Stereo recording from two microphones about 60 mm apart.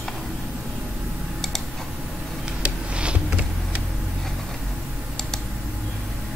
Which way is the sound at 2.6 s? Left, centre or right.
Centre.